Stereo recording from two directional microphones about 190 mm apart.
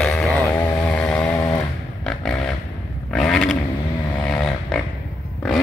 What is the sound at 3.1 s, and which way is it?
Roaring cats, 5° left (ahead or behind).